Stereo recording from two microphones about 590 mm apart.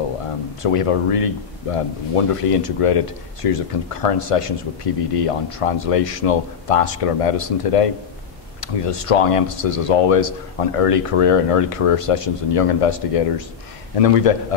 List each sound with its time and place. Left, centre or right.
0.6 s a man's voice: left